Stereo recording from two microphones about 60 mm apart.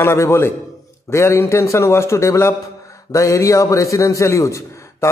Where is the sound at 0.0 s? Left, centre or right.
Left.